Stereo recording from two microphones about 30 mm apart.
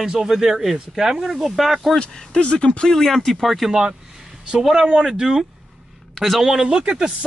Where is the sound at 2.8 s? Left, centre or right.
Centre.